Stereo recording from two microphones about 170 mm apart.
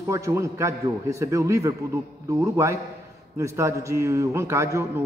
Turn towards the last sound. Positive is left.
turn(degrees=-15)  # may be behind; listen again after turning